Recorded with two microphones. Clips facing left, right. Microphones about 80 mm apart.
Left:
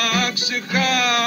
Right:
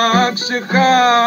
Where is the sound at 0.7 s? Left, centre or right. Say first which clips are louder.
Right 9 dB; right.